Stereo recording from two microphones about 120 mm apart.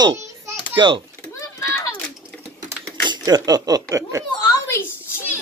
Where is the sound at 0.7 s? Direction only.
40° right (ahead or behind).